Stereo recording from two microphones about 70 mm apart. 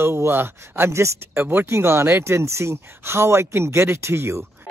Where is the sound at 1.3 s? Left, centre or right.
Right.